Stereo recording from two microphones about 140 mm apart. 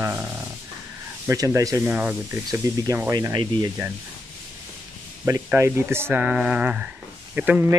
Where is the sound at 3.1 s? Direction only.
30° right (ahead or behind).